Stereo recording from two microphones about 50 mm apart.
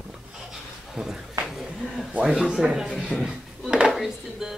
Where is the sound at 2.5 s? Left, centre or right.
Centre.